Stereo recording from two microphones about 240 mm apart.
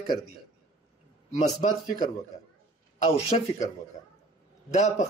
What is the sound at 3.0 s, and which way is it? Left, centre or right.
Speech, left.